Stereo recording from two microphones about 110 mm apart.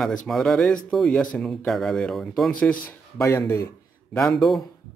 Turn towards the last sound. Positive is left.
turn(degrees=0)  # may be behind; listen again after turning